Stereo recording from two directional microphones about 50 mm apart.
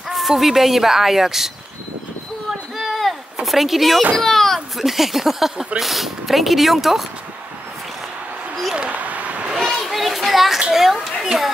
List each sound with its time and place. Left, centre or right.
0.1 s speech: centre
2.8 s a sound: centre
4.8 s speech: centre
8.7 s a sound: right
9.6 s children playing: centre
10.6 s speech: centre